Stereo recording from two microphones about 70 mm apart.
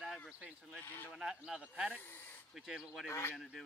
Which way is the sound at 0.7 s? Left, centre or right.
Left.